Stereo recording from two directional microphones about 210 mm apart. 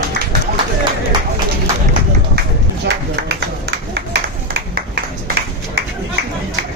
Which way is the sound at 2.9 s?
55° right (ahead or behind).